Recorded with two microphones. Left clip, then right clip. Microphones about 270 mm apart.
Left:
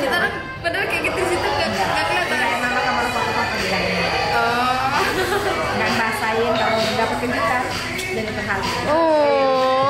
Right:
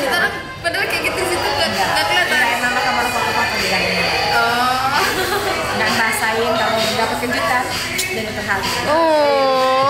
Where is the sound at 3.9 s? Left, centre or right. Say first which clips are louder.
Right 3 dB; centre.